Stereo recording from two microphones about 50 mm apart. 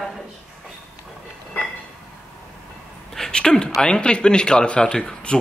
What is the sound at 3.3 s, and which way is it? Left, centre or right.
Speech, centre.